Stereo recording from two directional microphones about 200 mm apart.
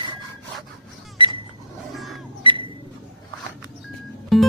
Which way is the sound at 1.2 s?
25° right (ahead or behind).